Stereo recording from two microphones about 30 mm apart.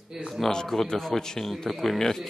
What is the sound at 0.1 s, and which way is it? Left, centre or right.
Speech, centre.